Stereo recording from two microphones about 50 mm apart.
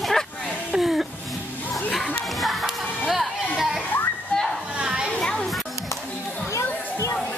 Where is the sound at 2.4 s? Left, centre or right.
Centre.